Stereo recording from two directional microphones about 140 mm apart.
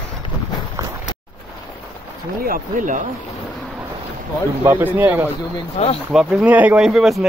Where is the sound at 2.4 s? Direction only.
80° right.